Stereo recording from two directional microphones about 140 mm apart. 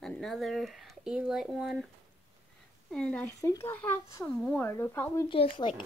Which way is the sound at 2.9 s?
5° left (ahead or behind).